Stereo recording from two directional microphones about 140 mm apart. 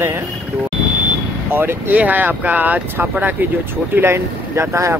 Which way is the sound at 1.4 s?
15° right (ahead or behind).